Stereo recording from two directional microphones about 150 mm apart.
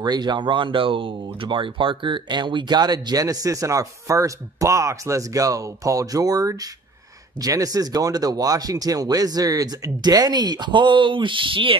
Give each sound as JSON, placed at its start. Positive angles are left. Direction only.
{"t": 0.0, "sound": "speech", "side_deg": -30}